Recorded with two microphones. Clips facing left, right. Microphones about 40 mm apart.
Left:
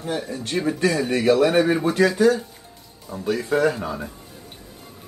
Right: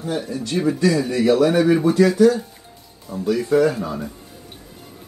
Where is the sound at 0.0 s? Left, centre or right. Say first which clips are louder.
Right 2 dB; left.